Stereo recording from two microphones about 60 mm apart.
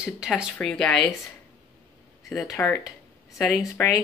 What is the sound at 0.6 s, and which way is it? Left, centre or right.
Speech, centre.